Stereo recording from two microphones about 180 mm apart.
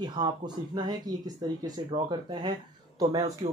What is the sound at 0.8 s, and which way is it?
Speech, 20° right (ahead or behind).